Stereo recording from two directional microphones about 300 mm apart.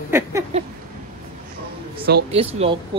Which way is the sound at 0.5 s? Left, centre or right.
Right.